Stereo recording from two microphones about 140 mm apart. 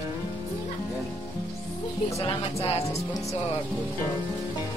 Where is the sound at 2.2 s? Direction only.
45° left (ahead or behind).